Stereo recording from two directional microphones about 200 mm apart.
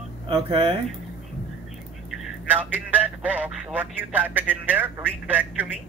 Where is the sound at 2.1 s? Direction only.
5° right (ahead or behind).